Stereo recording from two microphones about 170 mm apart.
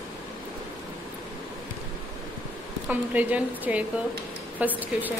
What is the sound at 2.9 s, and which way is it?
A woman's voice, 10° right (ahead or behind).